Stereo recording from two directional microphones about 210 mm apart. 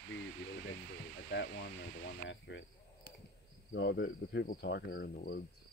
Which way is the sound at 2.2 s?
60° left (ahead or behind).